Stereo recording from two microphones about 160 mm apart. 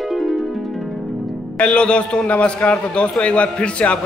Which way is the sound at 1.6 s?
5° left (ahead or behind).